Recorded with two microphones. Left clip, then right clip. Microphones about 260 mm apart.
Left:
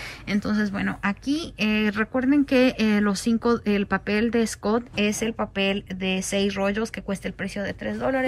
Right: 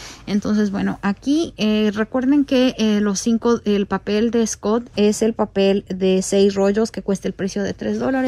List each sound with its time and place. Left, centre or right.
0.3 s speech: centre